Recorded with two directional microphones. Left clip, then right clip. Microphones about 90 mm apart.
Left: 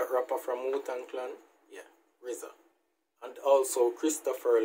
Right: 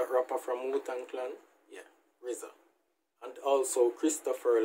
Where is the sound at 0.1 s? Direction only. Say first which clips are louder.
Even; 25° right (ahead or behind).